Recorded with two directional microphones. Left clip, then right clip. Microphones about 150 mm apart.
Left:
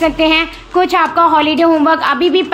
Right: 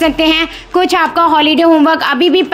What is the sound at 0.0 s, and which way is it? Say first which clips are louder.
A woman's voice: right 1 dB; 40° right (ahead or behind).